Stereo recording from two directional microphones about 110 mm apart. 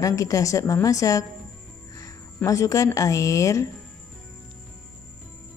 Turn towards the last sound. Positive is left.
turn(degrees=30)  # may be behind; listen again after turning